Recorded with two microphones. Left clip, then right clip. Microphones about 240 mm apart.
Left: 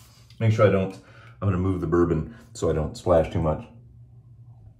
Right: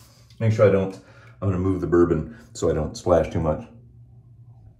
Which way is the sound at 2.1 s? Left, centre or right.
Centre.